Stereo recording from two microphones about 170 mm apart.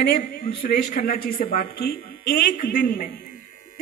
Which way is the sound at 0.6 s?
55° left (ahead or behind).